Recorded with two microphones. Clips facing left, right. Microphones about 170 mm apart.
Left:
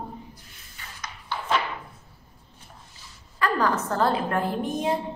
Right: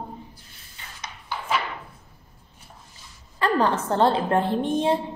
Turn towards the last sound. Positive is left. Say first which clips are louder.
# right 4 dB
turn(degrees=-30)  # may be behind; listen again after turning